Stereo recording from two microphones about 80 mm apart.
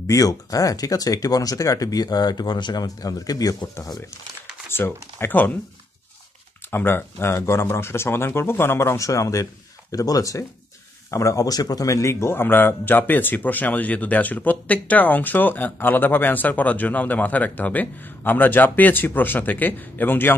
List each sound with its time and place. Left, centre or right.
0.0 s speech: left
4.6 s speech: left
6.7 s speech: left